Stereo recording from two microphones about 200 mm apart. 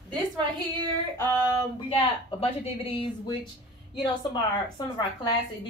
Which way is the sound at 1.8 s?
30° left (ahead or behind).